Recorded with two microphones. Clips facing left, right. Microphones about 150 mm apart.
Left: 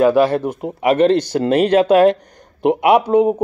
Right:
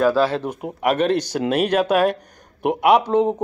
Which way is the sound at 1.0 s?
10° right (ahead or behind).